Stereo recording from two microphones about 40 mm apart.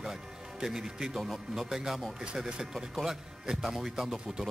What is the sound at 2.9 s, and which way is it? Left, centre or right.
Speech, centre.